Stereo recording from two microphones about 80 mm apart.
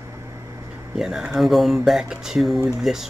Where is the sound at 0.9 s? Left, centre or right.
Centre.